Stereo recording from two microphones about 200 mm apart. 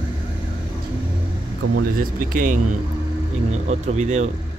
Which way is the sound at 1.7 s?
45° right (ahead or behind).